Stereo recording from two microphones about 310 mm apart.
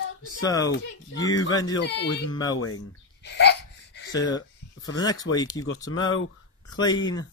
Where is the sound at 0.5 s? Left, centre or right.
Centre.